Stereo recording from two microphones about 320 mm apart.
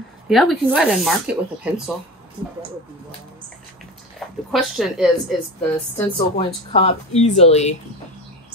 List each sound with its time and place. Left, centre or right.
0.3 s speech: centre
4.5 s speech: centre
5.9 s speech: centre